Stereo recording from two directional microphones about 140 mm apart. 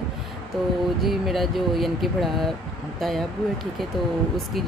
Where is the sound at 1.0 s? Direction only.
Centre (ahead or behind).